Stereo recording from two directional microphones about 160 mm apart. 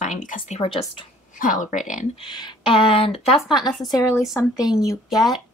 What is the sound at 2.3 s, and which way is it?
Speech, 30° left (ahead or behind).